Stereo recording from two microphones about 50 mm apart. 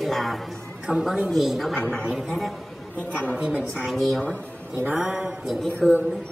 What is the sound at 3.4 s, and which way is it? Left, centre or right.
Speech, right.